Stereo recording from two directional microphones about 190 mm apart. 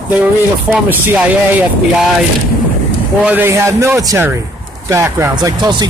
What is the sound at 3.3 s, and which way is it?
Speech, 10° right (ahead or behind).